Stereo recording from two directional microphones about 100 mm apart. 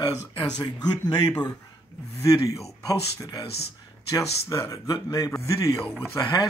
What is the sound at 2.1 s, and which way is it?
A man's voice, 35° left (ahead or behind).